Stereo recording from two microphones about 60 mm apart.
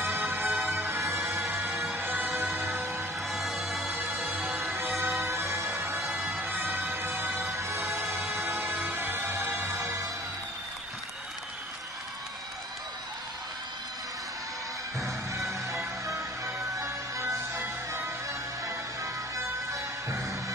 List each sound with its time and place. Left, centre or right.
0.0 s music: right
0.7 s music: right
3.3 s music: centre
3.9 s music: right
5.2 s music: right
6.0 s bagpipes: centre
6.3 s music: right
8.6 s music: right
15.0 s music: right
19.3 s music: right